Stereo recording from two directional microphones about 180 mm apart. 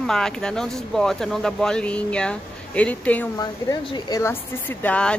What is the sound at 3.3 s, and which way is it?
Speech, 25° left (ahead or behind).